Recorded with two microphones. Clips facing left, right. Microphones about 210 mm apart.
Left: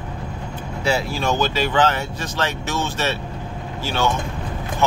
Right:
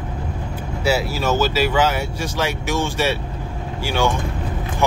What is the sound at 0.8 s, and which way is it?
Speech, 5° right (ahead or behind).